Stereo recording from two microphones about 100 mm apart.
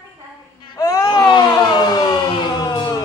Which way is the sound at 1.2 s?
45° left (ahead or behind).